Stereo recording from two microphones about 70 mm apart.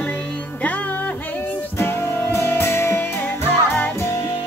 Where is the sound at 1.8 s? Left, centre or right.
Left.